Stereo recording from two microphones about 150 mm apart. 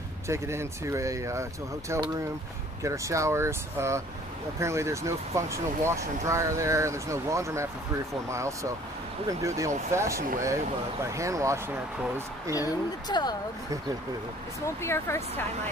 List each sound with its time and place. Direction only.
0.3 s speech: 20° right (ahead or behind)
12.5 s speech: 25° left (ahead or behind)
14.8 s speech: 15° left (ahead or behind)